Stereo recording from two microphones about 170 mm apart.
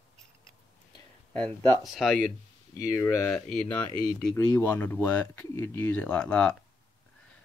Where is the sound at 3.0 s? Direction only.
15° left (ahead or behind).